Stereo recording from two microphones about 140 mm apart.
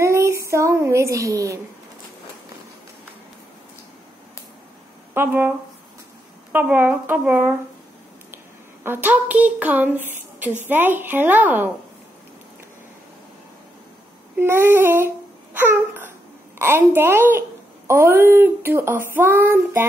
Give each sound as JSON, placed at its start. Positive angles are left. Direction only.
{"t": 0.0, "sound": "child singing", "side_deg": -20}
{"t": 5.1, "sound": "speech", "side_deg": -15}
{"t": 6.5, "sound": "speech", "side_deg": -10}
{"t": 8.8, "sound": "speech", "side_deg": -15}
{"t": 14.3, "sound": "a sound", "side_deg": -15}
{"t": 16.5, "sound": "speech", "side_deg": -15}